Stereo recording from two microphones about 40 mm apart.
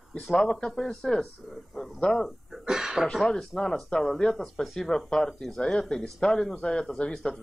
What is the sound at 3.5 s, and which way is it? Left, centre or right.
Speech, centre.